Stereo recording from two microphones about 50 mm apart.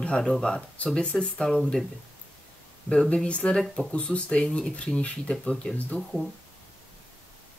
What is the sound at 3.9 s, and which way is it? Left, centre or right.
Speech, left.